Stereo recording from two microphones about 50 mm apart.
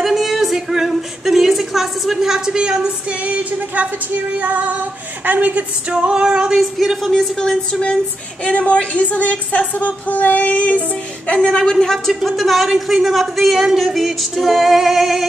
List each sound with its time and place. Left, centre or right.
0.0 s a sound: centre
3.3 s speech: right
4.4 s female singing: right
5.2 s a man's voice: right; by 7.1 s centre
7.1 s speech: centre
8.5 s a woman's voice: left
11.3 s speech: centre
12.1 s a man's voice: centre